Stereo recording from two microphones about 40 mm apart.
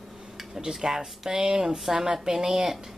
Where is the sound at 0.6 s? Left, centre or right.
Centre.